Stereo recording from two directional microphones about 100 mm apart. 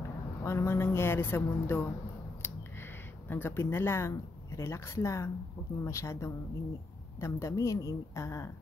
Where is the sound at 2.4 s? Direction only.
25° left (ahead or behind).